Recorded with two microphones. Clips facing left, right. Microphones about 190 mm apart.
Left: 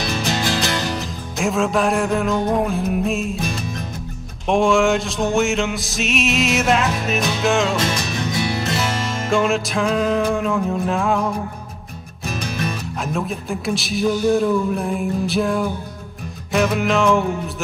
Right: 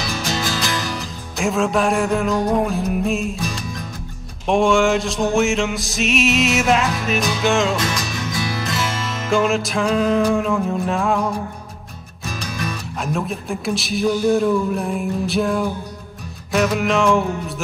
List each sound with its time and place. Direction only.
0.0 s music: 25° left (ahead or behind)
1.4 s music: centre (ahead or behind)
4.5 s music: centre (ahead or behind)
7.8 s music: 25° left (ahead or behind)
9.3 s music: centre (ahead or behind)
12.4 s music: 25° left (ahead or behind)
13.0 s music: centre (ahead or behind)